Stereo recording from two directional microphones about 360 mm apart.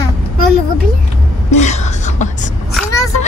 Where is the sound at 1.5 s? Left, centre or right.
Centre.